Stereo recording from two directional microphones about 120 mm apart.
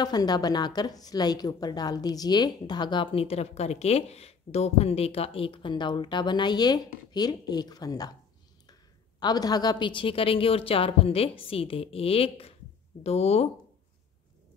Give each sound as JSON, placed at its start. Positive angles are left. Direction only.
{"t": 0.0, "sound": "speech", "side_deg": 35}
{"t": 9.2, "sound": "a woman's voice", "side_deg": 35}